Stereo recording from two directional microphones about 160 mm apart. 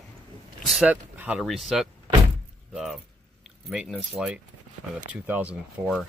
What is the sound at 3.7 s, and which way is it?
Speech, centre (ahead or behind).